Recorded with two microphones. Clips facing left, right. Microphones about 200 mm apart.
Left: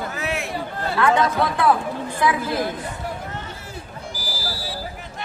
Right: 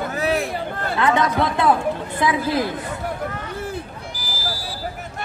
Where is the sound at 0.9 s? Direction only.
20° right (ahead or behind).